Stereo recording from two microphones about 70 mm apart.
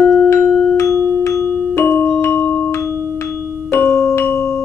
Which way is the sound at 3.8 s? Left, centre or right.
Centre.